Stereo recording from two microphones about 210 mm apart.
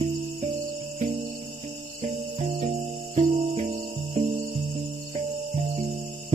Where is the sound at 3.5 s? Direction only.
25° right (ahead or behind).